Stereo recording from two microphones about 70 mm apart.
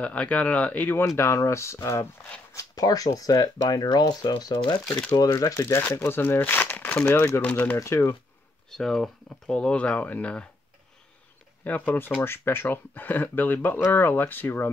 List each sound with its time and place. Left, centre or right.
0.0 s speech: left
1.1 s speech: left
2.5 s speech: left
5.3 s speech: left
5.8 s speech: left
7.2 s speech: left
7.4 s speech: left
7.7 s speech: left
8.6 s speech: centre
9.6 s speech: centre
11.6 s speech: left
12.2 s speech: left